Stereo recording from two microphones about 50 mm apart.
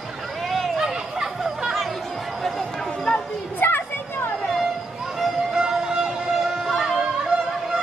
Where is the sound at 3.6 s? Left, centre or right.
Left.